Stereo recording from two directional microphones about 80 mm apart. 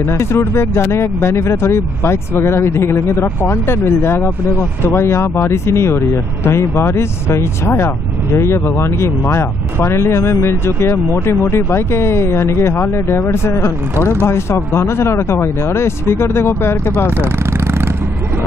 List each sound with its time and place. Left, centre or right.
0.0 s speech: left
17.2 s vehicle: right